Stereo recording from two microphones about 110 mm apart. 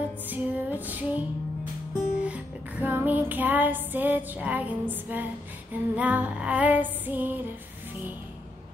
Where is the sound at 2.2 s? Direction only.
15° right (ahead or behind).